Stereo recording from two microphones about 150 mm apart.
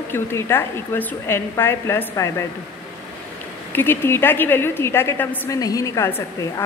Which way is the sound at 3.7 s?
15° left (ahead or behind).